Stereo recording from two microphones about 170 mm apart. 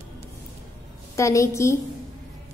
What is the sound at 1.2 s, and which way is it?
Speech, 15° left (ahead or behind).